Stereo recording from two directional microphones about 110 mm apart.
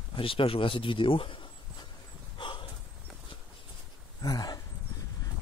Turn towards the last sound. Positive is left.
turn(degrees=35)  # may be behind; listen again after turning